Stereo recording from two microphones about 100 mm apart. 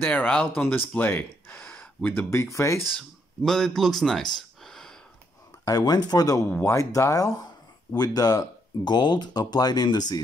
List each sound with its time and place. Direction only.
0.0 s speech: 15° left (ahead or behind)
3.0 s speech: 5° left (ahead or behind)
5.7 s speech: 40° left (ahead or behind)